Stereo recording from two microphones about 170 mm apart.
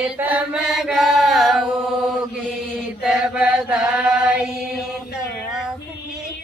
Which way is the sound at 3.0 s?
5° right (ahead or behind).